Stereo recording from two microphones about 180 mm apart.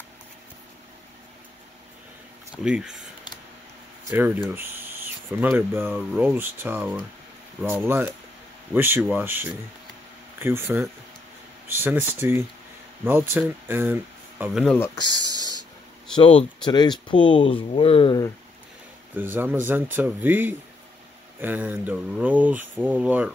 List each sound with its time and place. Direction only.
2.5 s speech: 5° right (ahead or behind)
4.1 s speech: 10° right (ahead or behind)
14.4 s speech: centre (ahead or behind)
15.0 s speech: 20° right (ahead or behind)
16.2 s speech: 30° left (ahead or behind)
19.1 s speech: 10° right (ahead or behind)